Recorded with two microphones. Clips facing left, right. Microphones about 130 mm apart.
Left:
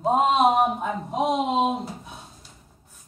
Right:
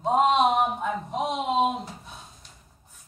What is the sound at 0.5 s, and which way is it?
Speech, 10° left (ahead or behind).